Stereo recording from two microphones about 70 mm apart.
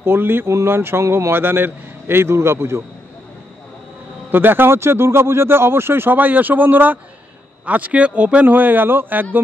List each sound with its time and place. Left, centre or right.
0.0 s speech: right
4.3 s speech: right